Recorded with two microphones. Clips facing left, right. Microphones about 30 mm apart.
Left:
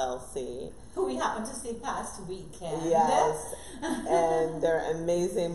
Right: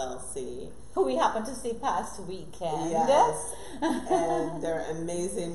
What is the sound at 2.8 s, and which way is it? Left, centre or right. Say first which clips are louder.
A woman's voice: right 1 dB; centre.